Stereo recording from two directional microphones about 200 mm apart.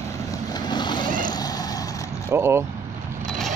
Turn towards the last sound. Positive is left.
turn(degrees=0)  # may be behind; listen again after turning